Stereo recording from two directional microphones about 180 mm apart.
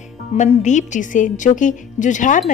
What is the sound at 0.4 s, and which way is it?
A woman's voice, 40° left (ahead or behind).